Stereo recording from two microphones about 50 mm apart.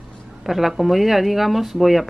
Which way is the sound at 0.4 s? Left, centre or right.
Centre.